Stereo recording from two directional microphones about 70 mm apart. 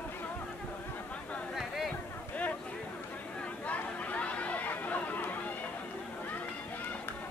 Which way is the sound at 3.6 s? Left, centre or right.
Left.